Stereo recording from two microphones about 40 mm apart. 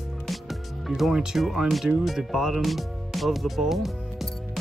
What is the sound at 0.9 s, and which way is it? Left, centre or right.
Speech, centre.